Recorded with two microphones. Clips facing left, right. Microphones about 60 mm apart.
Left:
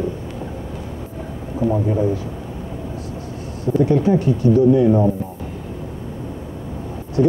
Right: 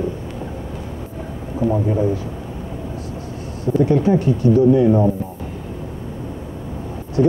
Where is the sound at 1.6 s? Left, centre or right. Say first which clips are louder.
Even; right.